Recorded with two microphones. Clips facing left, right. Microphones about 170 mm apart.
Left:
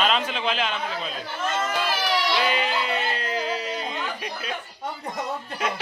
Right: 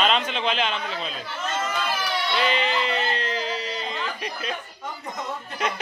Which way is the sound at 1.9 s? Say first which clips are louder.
Left 2 dB; 90° left.